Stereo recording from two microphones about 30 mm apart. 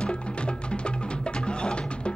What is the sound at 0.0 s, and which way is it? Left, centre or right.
Music, left.